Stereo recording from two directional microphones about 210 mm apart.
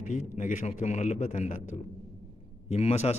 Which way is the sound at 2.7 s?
30° left (ahead or behind).